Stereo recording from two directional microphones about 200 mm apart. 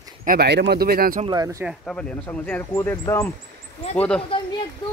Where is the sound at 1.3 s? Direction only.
15° right (ahead or behind).